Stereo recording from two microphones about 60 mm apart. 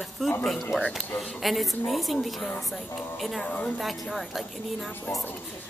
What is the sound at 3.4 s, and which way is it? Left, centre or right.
Speech, centre.